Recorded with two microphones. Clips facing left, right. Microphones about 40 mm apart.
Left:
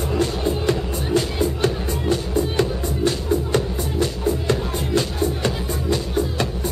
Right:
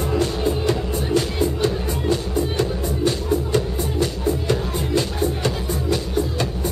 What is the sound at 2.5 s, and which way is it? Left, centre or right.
Music, left.